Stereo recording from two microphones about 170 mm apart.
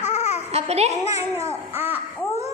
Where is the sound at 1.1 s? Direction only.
20° right (ahead or behind).